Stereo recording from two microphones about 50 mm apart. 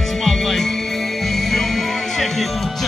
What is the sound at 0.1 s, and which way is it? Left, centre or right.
Music, centre.